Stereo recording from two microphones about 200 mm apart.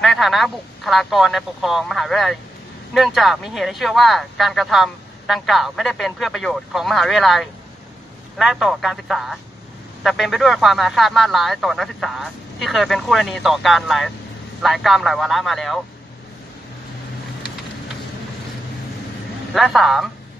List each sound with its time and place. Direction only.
0.0 s speech: centre (ahead or behind)
19.5 s speech: centre (ahead or behind)